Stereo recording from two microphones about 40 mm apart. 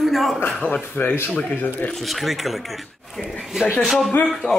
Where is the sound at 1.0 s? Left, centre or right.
Left.